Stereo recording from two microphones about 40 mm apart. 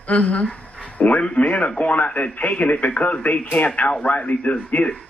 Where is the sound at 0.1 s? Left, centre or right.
Left.